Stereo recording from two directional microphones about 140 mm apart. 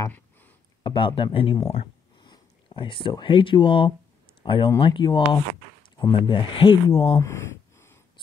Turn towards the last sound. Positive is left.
turn(degrees=20)  # may be behind; listen again after turning